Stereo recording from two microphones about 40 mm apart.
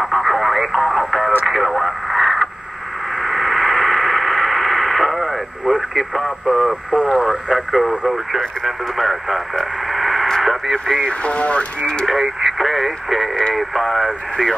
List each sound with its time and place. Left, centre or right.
0.0 s radio: centre
1.4 s speech: centre
3.2 s radio: centre
6.4 s speech: centre
9.9 s radio: centre
10.4 s speech: centre
11.0 s speech: left
12.1 s speech: centre